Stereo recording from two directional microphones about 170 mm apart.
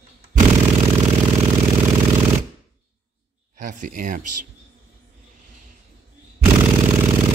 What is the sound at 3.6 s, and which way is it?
Speech, 45° right (ahead or behind).